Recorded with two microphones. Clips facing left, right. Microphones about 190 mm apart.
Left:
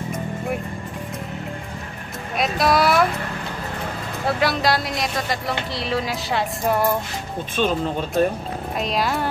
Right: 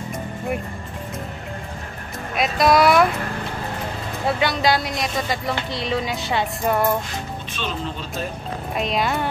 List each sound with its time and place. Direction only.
2.3 s speech: centre (ahead or behind)
4.4 s speech: centre (ahead or behind)
7.5 s speech: 50° left (ahead or behind)
8.7 s speech: centre (ahead or behind)